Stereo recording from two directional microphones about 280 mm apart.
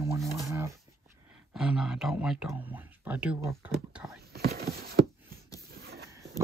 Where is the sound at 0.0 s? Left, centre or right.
Centre.